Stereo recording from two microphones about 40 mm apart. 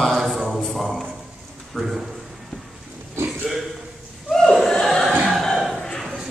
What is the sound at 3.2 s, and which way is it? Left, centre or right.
Burping, right.